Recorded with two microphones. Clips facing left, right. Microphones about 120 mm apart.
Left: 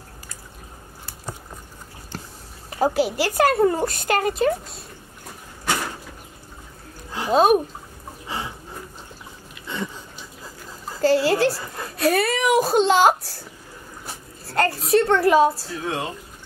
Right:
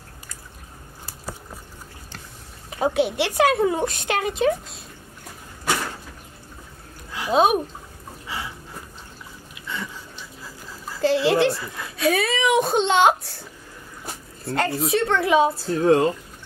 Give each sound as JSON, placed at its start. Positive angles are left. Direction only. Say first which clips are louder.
{"t": 2.7, "sound": "speech", "louder": "left 1 dB", "side_deg": 0}
{"t": 7.1, "sound": "music", "louder": "left 2 dB", "side_deg": 30}
{"t": 7.3, "sound": "speech", "louder": "left 2 dB", "side_deg": 0}
{"t": 11.0, "sound": "speech", "louder": "even", "side_deg": 0}
{"t": 15.7, "sound": "speech", "louder": "right 10 dB", "side_deg": -40}